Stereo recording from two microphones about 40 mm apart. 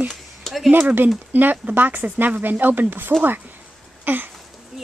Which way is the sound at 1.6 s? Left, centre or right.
Right.